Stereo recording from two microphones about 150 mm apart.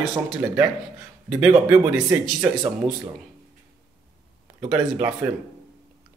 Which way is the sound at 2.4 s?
30° right (ahead or behind).